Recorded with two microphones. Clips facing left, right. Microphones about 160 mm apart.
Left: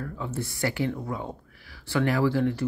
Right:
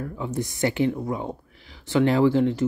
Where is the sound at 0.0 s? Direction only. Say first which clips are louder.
Right 4 dB; 15° right (ahead or behind).